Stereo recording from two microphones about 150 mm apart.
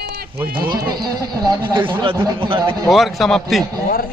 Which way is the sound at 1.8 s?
35° right (ahead or behind).